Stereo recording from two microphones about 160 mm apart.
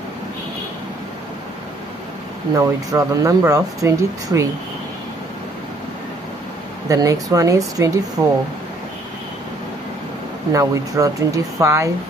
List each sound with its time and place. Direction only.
2.5 s speech: 20° right (ahead or behind)
6.9 s speech: 20° right (ahead or behind)
8.2 s speech: 10° right (ahead or behind)
10.5 s speech: 20° right (ahead or behind)